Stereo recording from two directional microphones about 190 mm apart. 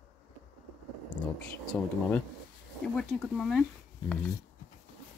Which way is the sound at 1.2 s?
5° left (ahead or behind).